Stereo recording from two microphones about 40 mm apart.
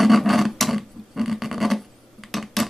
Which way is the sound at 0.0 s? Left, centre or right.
Centre.